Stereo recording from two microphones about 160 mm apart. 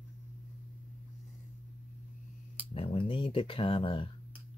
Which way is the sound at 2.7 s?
35° left (ahead or behind).